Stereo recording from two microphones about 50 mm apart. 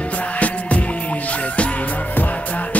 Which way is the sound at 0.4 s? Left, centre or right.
Left.